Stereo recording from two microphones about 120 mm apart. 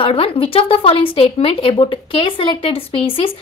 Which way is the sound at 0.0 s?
50° left (ahead or behind).